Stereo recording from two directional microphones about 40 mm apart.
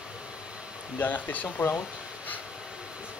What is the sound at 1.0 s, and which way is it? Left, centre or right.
Speech, left.